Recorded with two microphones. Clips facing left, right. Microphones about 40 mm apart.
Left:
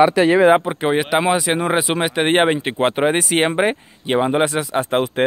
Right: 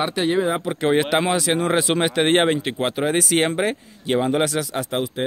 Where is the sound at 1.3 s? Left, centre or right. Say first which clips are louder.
Left 2 dB; left.